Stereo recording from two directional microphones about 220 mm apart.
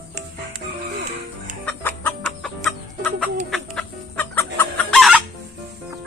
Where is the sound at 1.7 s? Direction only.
10° left (ahead or behind).